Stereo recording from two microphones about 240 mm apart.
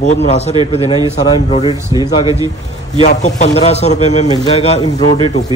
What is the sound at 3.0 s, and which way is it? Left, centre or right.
A man's voice, left.